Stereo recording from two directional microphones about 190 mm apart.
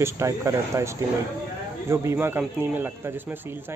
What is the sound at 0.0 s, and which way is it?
Speech, 15° right (ahead or behind).